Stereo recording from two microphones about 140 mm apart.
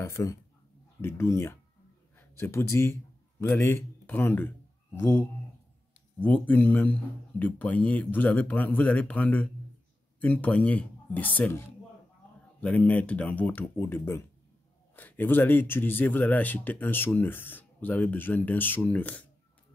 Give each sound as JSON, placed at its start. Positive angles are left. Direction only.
{"t": 0.0, "sound": "speech", "side_deg": 20}